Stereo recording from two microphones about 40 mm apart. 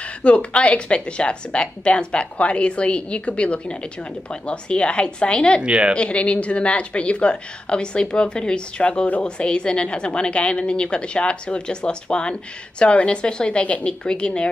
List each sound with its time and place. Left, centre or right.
0.0 s a woman's voice: left
5.6 s a woman's voice: right
5.9 s a woman's voice: left